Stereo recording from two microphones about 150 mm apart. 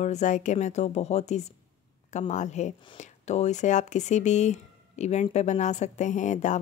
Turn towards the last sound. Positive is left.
turn(degrees=55)  # may be behind; listen again after turning